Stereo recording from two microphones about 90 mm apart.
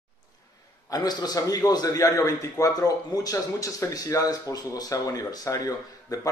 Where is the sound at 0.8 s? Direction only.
50° left (ahead or behind).